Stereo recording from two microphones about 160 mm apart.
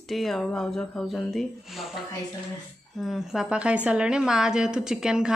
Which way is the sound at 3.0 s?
Centre (ahead or behind).